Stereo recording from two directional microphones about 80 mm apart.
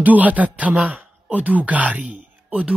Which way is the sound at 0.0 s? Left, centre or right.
Centre.